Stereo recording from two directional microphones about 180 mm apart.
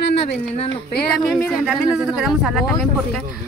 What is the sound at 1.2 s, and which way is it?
Speech, centre (ahead or behind).